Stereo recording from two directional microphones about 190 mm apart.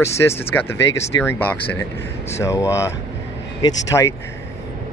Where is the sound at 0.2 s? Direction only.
15° left (ahead or behind).